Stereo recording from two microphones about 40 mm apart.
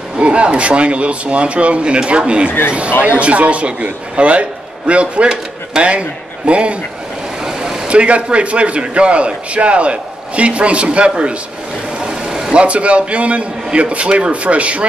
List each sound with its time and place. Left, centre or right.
0.2 s a man's voice: right
7.4 s a sound: centre
7.9 s a man's voice: right
12.0 s vehicle: right
12.5 s a man's voice: right